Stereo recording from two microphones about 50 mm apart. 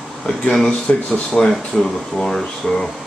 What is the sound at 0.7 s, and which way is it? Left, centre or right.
Speech, left.